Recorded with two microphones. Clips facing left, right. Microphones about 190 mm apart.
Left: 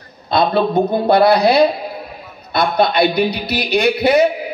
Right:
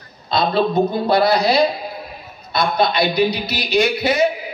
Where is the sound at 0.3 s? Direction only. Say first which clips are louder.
Left 3 dB; 55° left (ahead or behind).